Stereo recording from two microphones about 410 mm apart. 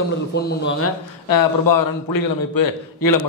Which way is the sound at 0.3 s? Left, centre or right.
Left.